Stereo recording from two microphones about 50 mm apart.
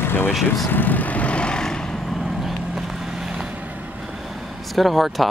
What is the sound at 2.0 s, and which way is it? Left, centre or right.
Vehicle, centre.